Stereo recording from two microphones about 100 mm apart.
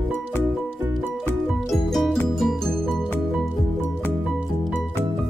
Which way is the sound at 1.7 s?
Centre (ahead or behind).